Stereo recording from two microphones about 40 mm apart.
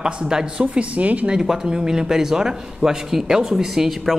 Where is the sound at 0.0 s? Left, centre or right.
Centre.